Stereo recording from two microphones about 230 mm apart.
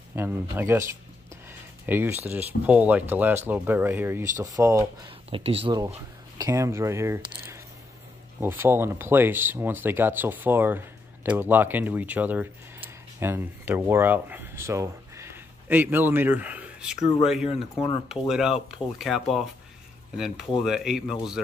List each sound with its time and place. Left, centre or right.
0.1 s speech: centre
1.9 s speech: centre
5.3 s speech: right; by 21.2 s centre